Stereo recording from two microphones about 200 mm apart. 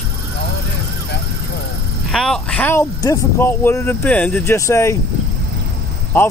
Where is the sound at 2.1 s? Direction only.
5° left (ahead or behind).